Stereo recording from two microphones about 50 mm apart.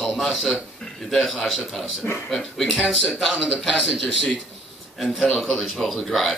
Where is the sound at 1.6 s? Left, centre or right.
Centre.